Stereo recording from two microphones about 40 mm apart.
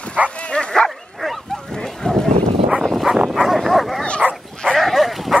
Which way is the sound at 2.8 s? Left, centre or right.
Centre.